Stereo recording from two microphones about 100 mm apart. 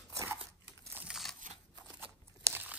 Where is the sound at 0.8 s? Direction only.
20° right (ahead or behind).